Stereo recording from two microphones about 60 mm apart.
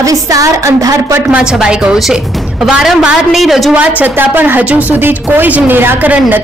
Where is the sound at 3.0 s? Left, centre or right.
Centre.